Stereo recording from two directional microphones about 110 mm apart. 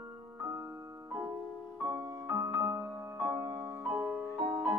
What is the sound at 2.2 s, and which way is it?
Music, 20° right (ahead or behind).